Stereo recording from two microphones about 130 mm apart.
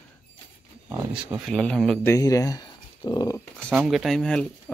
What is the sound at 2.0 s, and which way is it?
Speech, 20° left (ahead or behind).